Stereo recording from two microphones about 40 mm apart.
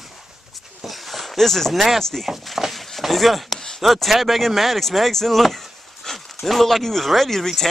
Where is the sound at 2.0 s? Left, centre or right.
Centre.